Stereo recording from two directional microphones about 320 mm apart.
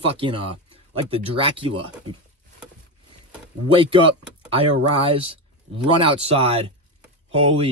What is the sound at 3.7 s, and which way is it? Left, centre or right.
A man's voice, centre.